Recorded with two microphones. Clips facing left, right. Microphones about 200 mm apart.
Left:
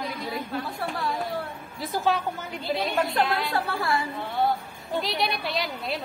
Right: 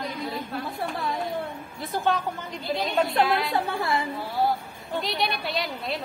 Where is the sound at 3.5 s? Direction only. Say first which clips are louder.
Right 1 dB; 20° right (ahead or behind).